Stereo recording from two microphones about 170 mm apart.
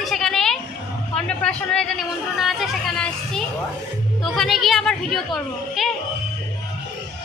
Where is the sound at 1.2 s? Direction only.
5° left (ahead or behind).